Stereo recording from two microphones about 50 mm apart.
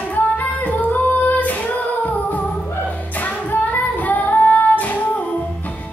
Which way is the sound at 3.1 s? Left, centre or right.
Left.